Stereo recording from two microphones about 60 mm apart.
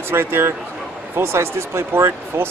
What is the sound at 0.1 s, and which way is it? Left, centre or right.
Speech, right.